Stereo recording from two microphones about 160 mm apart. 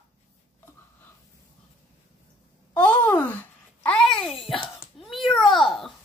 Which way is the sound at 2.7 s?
5° left (ahead or behind).